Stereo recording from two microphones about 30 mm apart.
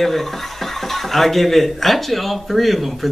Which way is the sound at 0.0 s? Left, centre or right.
Centre.